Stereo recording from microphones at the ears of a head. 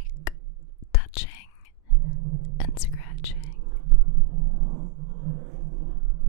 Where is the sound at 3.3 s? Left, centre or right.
Right.